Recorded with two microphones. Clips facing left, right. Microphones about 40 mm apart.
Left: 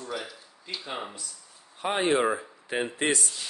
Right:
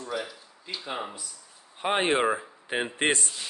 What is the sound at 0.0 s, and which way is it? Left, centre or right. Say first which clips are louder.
Speech: right 2 dB; centre.